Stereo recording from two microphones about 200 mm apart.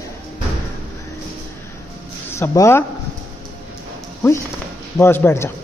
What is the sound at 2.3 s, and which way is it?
Speech, 15° left (ahead or behind).